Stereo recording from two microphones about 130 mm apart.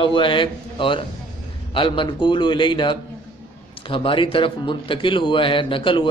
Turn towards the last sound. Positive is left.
turn(degrees=40)  # may be behind; listen again after turning